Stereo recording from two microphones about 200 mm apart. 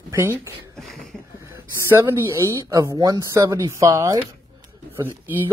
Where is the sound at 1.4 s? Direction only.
15° right (ahead or behind).